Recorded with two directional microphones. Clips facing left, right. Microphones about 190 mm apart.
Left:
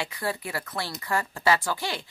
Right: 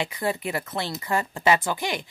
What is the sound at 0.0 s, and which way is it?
Speech, 20° right (ahead or behind).